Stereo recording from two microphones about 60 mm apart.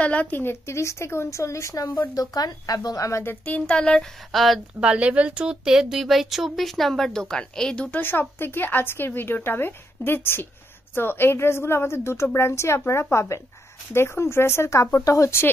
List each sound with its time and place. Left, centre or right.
0.0 s a woman's voice: left
0.3 s speech: left
2.1 s speech: left
3.3 s a woman's voice: left
3.6 s speech: centre
4.3 s a woman's voice: centre
4.7 s a woman's voice: centre
5.6 s a woman's voice: centre
8.0 s a woman's voice: left
14.7 s speech: left